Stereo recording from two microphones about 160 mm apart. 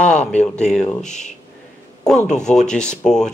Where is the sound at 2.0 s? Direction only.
5° left (ahead or behind).